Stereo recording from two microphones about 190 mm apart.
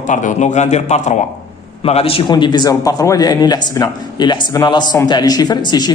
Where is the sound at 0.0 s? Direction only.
40° left (ahead or behind).